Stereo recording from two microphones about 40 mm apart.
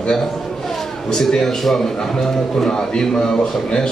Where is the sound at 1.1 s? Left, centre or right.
Centre.